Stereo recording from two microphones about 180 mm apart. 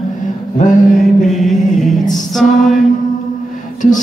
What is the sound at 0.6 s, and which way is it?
Mantra, 45° left (ahead or behind).